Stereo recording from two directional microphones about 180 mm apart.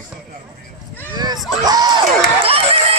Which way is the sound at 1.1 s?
25° right (ahead or behind).